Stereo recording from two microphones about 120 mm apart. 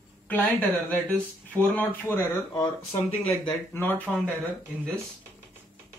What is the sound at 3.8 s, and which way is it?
Speech, 15° left (ahead or behind).